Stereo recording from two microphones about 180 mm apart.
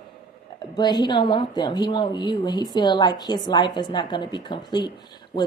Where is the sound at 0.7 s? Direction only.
25° left (ahead or behind).